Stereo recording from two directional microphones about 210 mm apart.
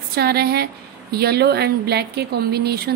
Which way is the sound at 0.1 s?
50° right (ahead or behind).